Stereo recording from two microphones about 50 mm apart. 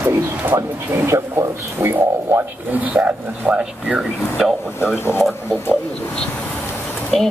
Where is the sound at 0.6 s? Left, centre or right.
Right.